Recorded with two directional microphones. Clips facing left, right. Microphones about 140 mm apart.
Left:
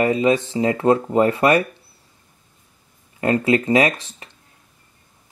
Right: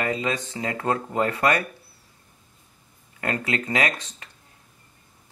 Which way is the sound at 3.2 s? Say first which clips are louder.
Left 9 dB; 25° left (ahead or behind).